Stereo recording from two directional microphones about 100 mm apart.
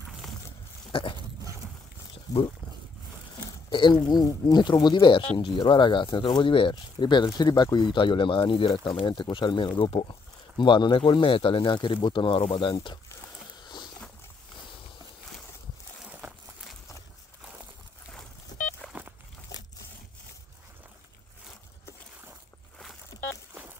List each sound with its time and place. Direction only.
0.9 s speech: 65° left (ahead or behind)
3.7 s speech: 50° left (ahead or behind)
4.1 s speech: 40° left (ahead or behind); by 9.1 s 65° left (ahead or behind)
9.1 s speech: 50° left (ahead or behind); by 10.1 s 65° left (ahead or behind)
10.6 s speech: 55° left (ahead or behind)
16.1 s a sound: 15° right (ahead or behind)
18.8 s a sound: centre (ahead or behind)